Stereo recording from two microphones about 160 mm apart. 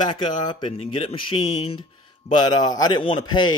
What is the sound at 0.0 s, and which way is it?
Speech, 30° left (ahead or behind).